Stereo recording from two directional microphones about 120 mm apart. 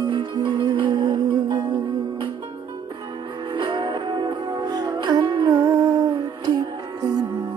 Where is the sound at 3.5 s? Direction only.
45° right (ahead or behind).